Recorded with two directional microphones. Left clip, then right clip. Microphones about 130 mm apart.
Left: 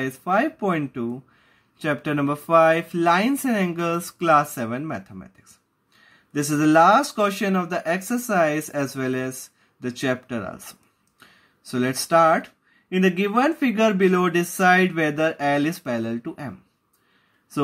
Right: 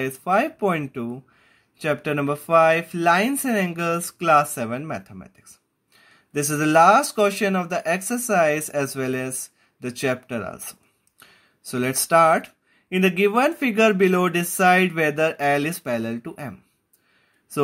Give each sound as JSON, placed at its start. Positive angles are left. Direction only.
{"t": 0.0, "sound": "speech", "side_deg": -30}